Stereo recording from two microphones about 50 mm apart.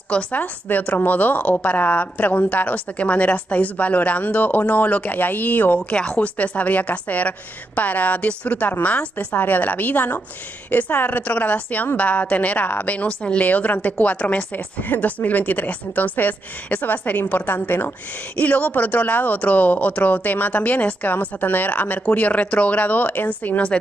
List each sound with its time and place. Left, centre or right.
0.1 s a woman's voice: left
5.9 s a woman's voice: left